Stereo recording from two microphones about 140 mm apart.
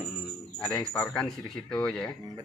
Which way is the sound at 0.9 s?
5° left (ahead or behind).